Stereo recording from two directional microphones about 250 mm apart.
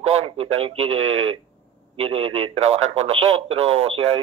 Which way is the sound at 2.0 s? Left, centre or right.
Right.